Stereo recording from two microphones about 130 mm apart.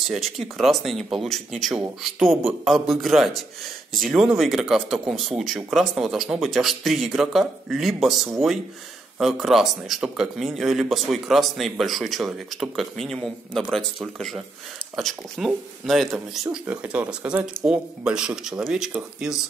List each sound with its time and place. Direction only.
0.1 s speech: centre (ahead or behind)
16.1 s a man's voice: 15° right (ahead or behind)